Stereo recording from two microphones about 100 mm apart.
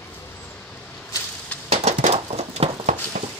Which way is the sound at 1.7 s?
90° right.